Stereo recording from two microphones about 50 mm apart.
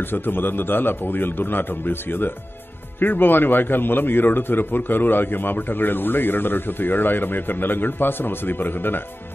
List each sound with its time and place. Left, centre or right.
0.0 s a man's voice: left